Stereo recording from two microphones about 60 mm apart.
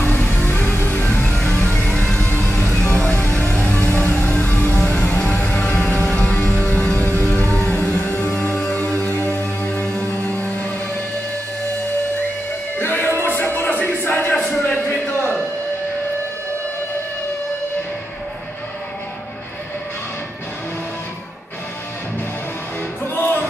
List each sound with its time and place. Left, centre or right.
0.0 s music: left
2.7 s music: centre; by 4.8 s left
4.8 s music: centre
8.9 s music: left
9.6 s music: left
12.7 s music: left
13.6 s a sound: left
14.3 s a sound: centre
14.7 s a sound: left
23.1 s music: left